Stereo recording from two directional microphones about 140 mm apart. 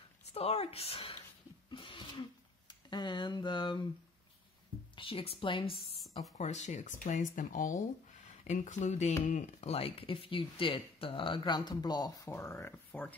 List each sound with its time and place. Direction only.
0.3 s speech: 45° left (ahead or behind)
1.7 s a sound: 35° left (ahead or behind)
2.7 s speech: 30° left (ahead or behind)
4.9 s speech: 40° left (ahead or behind)
6.3 s speech: 55° left (ahead or behind); by 13.1 s 15° left (ahead or behind)